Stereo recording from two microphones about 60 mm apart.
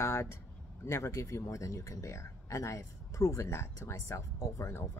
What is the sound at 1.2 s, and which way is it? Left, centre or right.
Speech, left.